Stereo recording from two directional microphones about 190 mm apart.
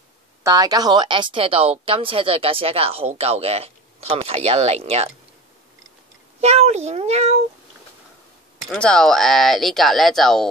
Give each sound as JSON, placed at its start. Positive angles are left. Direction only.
{"t": 0.4, "sound": "a woman's voice", "side_deg": -20}
{"t": 6.4, "sound": "a woman's voice", "side_deg": -35}
{"t": 8.6, "sound": "speech", "side_deg": 5}